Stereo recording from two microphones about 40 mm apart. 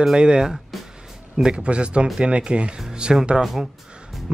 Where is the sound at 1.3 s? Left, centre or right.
Right.